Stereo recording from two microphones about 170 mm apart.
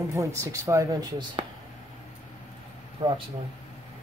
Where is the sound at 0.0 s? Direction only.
20° right (ahead or behind).